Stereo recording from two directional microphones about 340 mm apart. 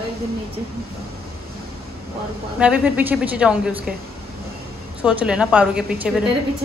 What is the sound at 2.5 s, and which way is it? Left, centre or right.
A woman's voice, centre.